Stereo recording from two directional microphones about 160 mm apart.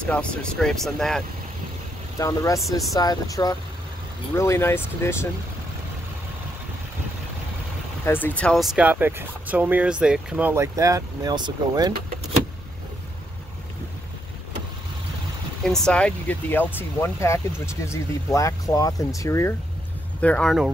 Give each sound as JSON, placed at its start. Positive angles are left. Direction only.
{"t": 0.0, "sound": "speech", "side_deg": 5}
{"t": 2.1, "sound": "speech", "side_deg": 20}
{"t": 8.0, "sound": "speech", "side_deg": 10}
{"t": 15.8, "sound": "speech", "side_deg": 5}
{"t": 20.2, "sound": "speech", "side_deg": 10}